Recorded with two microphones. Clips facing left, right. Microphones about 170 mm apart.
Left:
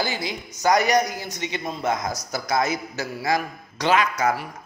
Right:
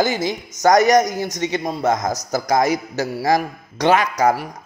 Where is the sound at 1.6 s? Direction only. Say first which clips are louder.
Right 4 dB; 40° right (ahead or behind).